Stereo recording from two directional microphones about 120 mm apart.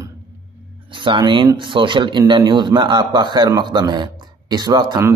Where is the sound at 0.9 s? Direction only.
40° right (ahead or behind).